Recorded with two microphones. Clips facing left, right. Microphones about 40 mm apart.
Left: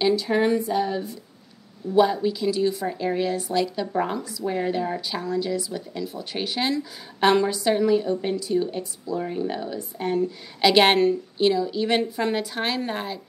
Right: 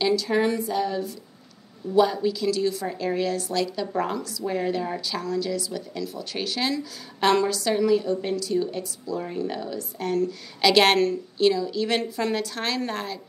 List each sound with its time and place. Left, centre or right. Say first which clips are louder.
0.0 s speech: left 1 dB; centre